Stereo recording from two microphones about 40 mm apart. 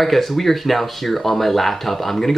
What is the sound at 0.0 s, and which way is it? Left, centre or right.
Speech, centre.